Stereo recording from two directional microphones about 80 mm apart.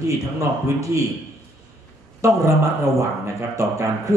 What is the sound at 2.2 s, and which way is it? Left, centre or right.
Speech, right.